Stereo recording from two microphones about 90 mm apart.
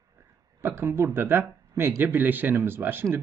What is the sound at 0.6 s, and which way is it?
Speech, 25° right (ahead or behind).